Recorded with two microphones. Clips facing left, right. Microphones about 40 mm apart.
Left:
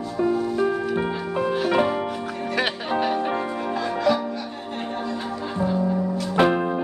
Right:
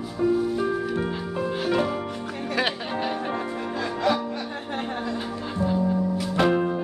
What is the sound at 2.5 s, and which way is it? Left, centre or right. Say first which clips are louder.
Music: left 2 dB; centre.